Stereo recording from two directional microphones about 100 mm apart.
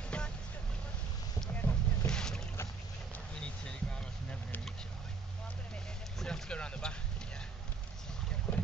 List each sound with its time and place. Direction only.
0.1 s vehicle: 10° left (ahead or behind)
1.5 s boat: 20° left (ahead or behind)
2.0 s boat: 5° left (ahead or behind)
3.3 s a sound: 10° left (ahead or behind)
6.1 s a sound: 5° left (ahead or behind)
8.5 s boat: 10° left (ahead or behind)